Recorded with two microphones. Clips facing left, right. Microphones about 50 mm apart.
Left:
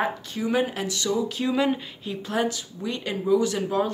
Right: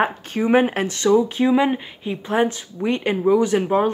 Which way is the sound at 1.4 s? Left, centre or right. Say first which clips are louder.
Right 6 dB; right.